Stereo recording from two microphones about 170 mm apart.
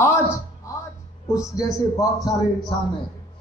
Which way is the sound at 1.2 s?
20° left (ahead or behind).